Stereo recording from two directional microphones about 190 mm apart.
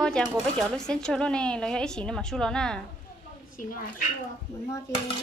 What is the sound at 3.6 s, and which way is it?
Speech, 45° left (ahead or behind).